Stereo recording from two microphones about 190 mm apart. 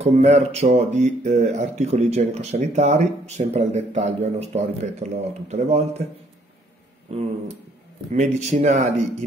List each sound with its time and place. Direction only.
0.0 s speech: 35° right (ahead or behind)
7.1 s speech: 35° right (ahead or behind)